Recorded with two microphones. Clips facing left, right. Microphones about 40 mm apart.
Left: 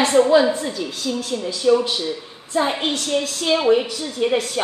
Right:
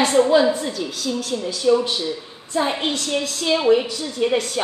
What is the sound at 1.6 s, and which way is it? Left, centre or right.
A woman's voice, centre.